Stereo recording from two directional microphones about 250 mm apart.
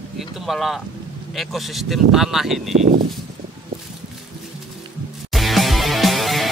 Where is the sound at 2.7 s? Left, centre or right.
Right.